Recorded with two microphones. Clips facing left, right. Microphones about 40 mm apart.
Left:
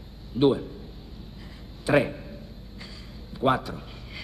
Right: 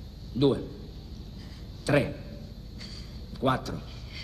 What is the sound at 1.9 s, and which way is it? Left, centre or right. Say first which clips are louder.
Speech: left 3 dB; centre.